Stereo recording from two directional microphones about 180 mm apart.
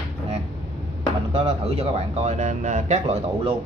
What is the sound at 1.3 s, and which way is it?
Speech, 35° right (ahead or behind).